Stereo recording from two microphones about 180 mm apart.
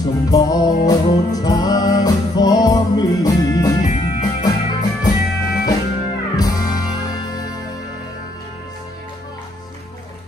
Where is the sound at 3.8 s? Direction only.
40° left (ahead or behind).